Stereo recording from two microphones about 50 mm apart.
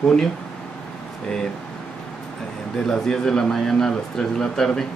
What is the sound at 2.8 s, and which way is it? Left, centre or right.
Speech, centre.